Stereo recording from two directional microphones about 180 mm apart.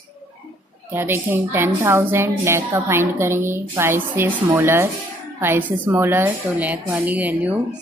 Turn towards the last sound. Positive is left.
turn(degrees=-10)  # may be behind; listen again after turning